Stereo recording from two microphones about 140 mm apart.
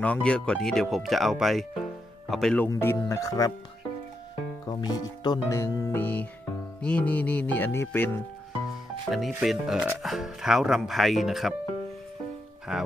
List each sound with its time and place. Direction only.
0.0 s speech: 10° left (ahead or behind)
2.6 s speech: 15° left (ahead or behind)
4.6 s speech: 30° left (ahead or behind)
9.4 s speech: 5° right (ahead or behind)
12.7 s speech: 5° right (ahead or behind)